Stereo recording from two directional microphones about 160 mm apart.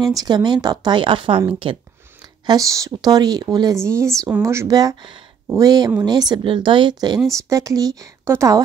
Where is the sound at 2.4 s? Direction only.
20° right (ahead or behind).